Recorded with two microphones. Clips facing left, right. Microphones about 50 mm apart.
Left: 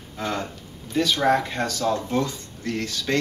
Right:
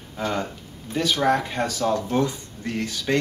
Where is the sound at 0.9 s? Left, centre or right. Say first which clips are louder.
Left 1 dB; centre.